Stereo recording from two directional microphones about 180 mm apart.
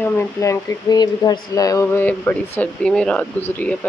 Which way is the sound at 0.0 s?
10° left (ahead or behind).